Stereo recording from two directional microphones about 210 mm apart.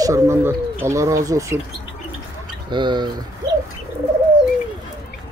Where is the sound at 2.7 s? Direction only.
20° right (ahead or behind).